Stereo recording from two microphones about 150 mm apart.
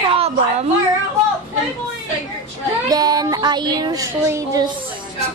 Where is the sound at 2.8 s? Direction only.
25° right (ahead or behind).